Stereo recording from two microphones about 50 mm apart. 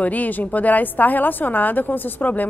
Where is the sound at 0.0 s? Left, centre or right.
Left.